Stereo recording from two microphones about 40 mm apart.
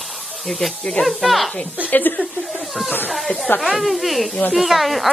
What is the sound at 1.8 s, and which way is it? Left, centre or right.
Speech, left.